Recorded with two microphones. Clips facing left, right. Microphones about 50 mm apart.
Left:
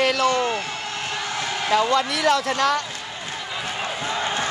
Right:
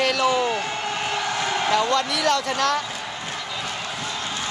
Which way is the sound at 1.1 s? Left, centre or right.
Centre.